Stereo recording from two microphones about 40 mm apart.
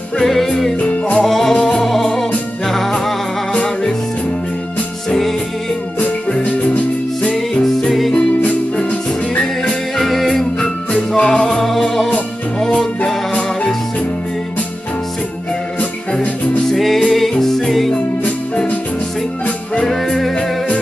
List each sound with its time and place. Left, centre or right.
0.2 s music: centre
0.7 s music: left
1.2 s music: centre
6.4 s music: left
7.6 s music: centre
9.4 s music: centre
10.6 s music: left
11.4 s music: centre
12.5 s music: centre
16.7 s music: centre
19.9 s music: centre